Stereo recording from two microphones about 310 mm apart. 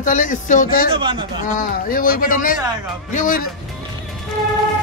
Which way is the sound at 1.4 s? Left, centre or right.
Left.